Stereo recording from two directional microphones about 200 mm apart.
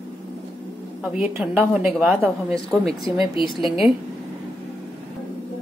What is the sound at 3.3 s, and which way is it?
Speech, 25° left (ahead or behind).